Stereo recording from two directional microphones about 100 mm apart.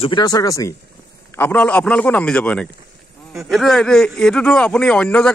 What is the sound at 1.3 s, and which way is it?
A man's voice, 20° left (ahead or behind).